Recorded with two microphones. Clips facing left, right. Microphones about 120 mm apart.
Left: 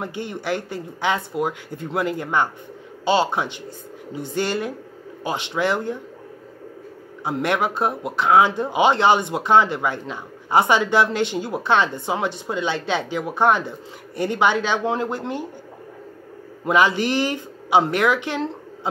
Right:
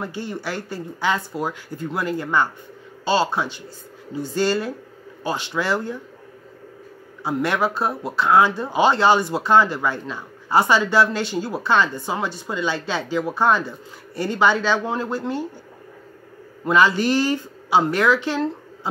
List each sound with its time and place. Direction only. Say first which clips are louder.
0.0 s speech: even; 20° left (ahead or behind)
7.2 s speech: even; 20° left (ahead or behind)
16.6 s speech: right 1 dB; 20° left (ahead or behind)